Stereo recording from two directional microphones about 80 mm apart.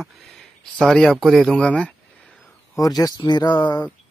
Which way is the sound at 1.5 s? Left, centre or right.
Centre.